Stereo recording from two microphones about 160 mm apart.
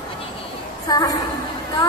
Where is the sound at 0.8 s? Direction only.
25° left (ahead or behind).